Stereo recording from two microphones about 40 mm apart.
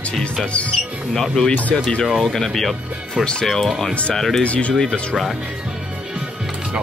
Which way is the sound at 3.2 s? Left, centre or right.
Left.